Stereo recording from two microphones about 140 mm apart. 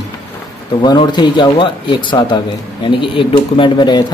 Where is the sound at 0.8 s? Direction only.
30° left (ahead or behind).